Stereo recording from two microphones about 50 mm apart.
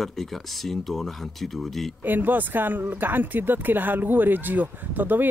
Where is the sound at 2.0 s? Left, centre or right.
Right.